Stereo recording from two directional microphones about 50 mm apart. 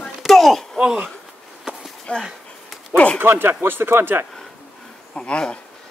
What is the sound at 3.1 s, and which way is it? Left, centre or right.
Speech, right.